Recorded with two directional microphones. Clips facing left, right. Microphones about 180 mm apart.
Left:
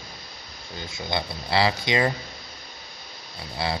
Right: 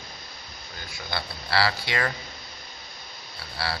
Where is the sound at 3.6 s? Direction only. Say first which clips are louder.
Left 4 dB; 20° left (ahead or behind).